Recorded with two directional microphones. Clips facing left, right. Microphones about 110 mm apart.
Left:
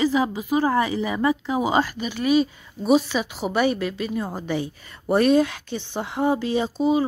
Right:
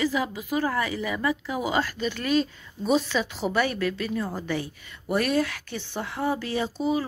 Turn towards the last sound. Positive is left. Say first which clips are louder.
# left 5 dB
turn(degrees=20)  # may be behind; listen again after turning